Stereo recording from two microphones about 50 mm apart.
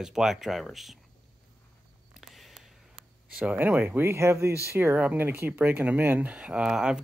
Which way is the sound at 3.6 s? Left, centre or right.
Right.